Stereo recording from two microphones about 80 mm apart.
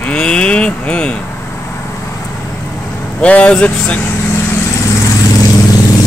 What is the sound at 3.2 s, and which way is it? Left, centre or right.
Speech, centre.